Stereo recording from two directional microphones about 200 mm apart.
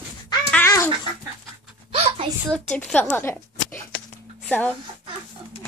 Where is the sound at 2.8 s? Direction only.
10° left (ahead or behind).